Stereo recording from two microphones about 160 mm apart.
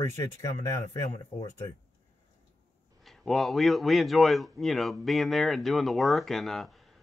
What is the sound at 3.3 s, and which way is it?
A man's voice, centre (ahead or behind).